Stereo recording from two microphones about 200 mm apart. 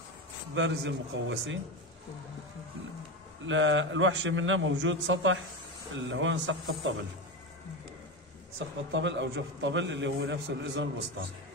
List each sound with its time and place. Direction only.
0.6 s a man's voice: 65° right (ahead or behind)
3.4 s a man's voice: 70° right (ahead or behind)
8.5 s a man's voice: 65° right (ahead or behind)